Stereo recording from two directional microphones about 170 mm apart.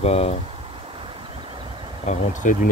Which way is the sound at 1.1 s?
30° right (ahead or behind).